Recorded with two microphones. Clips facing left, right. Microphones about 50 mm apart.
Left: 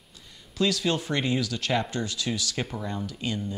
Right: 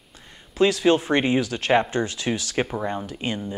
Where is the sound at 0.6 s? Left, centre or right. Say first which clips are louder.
Right 7 dB; right.